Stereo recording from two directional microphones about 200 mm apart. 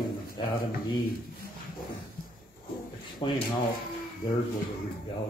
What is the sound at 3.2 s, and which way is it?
Speech, 25° left (ahead or behind).